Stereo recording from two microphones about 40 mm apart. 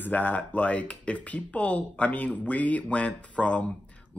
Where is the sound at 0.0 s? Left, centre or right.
Left.